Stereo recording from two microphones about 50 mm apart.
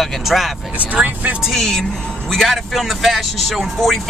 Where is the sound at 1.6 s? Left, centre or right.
Centre.